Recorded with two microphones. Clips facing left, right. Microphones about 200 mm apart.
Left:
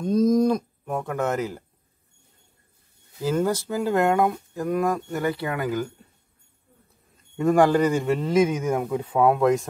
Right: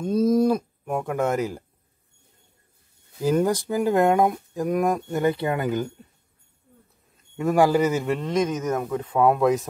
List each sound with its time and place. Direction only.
0.0 s livestock: 5° right (ahead or behind)
3.2 s speech: 15° right (ahead or behind)
7.3 s a man's voice: 5° right (ahead or behind)